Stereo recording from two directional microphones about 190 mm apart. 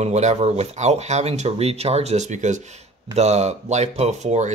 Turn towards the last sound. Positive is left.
turn(degrees=-35)  # may be behind; listen again after turning